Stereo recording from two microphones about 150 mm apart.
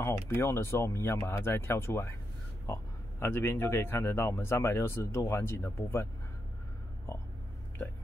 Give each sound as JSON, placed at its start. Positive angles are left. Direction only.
{"t": 0.3, "sound": "a man's voice", "side_deg": 15}
{"t": 7.1, "sound": "a man's voice", "side_deg": 15}